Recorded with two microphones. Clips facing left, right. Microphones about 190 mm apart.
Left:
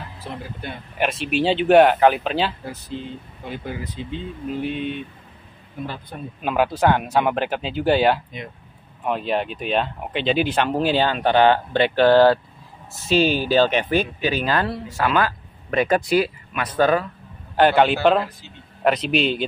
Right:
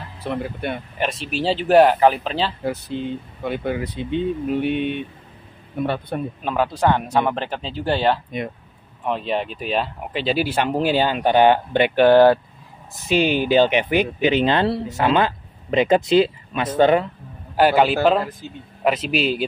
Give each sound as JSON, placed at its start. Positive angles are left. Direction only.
{"t": 0.3, "sound": "speech", "side_deg": -65}
{"t": 0.9, "sound": "speech", "side_deg": 5}
{"t": 2.9, "sound": "speech", "side_deg": -60}
{"t": 6.4, "sound": "a man's voice", "side_deg": 5}
{"t": 17.6, "sound": "speech", "side_deg": -5}